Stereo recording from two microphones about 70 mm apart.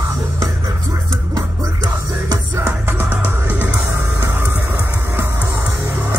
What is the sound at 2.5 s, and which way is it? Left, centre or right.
Music, right.